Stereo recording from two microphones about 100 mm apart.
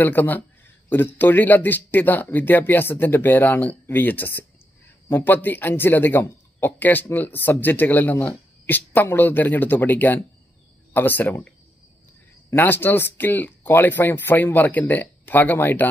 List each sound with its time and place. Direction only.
0.0 s speech: 20° left (ahead or behind)